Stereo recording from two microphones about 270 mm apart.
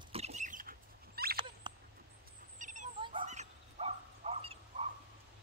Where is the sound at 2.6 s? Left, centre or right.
Right.